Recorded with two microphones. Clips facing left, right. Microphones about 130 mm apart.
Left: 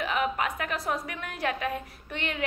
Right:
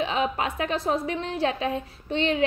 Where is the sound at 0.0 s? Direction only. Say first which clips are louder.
Right 3 dB; 30° right (ahead or behind).